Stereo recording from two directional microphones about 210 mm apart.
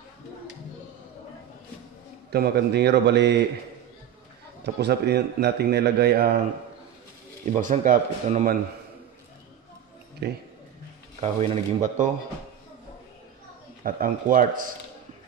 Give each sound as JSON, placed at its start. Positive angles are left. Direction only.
{"t": 2.3, "sound": "a man's voice", "side_deg": -50}
{"t": 4.7, "sound": "a man's voice", "side_deg": -50}
{"t": 7.4, "sound": "speech", "side_deg": -35}
{"t": 10.2, "sound": "a man's voice", "side_deg": -50}
{"t": 11.1, "sound": "speech", "side_deg": -30}
{"t": 13.8, "sound": "speech", "side_deg": -40}